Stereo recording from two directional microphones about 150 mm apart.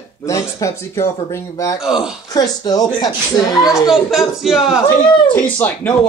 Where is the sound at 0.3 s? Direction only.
20° left (ahead or behind).